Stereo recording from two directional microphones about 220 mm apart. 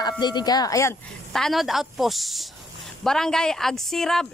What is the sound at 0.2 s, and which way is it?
Speech, 20° left (ahead or behind).